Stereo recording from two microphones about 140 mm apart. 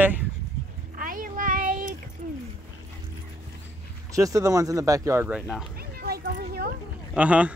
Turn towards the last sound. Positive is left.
turn(degrees=-10)  # may be behind; listen again after turning